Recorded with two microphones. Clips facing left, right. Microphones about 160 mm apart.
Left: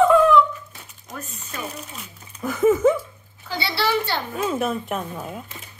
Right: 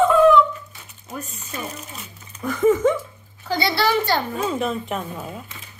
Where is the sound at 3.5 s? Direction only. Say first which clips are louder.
Right 3 dB; 45° right (ahead or behind).